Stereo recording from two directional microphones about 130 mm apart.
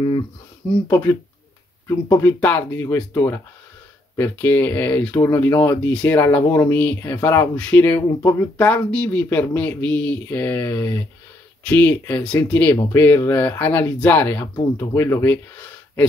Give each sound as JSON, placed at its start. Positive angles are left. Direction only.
{"t": 0.8, "sound": "speech", "side_deg": 25}